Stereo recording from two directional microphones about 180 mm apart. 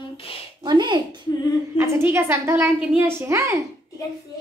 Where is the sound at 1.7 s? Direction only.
15° right (ahead or behind).